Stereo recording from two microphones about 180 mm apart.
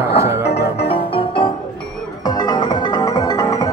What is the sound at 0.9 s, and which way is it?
Music, 30° left (ahead or behind).